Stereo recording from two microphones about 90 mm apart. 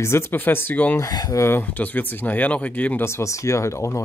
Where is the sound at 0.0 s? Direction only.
30° left (ahead or behind).